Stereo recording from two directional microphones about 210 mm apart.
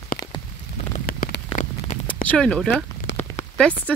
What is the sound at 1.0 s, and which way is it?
Rain on surface, 45° left (ahead or behind).